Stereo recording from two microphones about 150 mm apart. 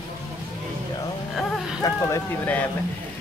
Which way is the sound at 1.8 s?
25° left (ahead or behind).